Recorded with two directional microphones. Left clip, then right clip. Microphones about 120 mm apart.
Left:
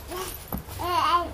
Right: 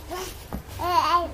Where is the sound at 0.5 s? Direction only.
15° left (ahead or behind).